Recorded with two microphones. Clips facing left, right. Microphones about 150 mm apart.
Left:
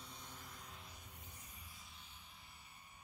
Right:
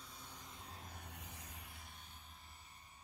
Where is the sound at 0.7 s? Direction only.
45° right (ahead or behind).